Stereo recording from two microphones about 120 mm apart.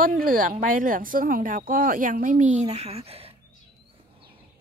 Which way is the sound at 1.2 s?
90° right.